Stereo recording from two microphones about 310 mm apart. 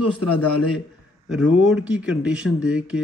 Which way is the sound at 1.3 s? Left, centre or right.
Centre.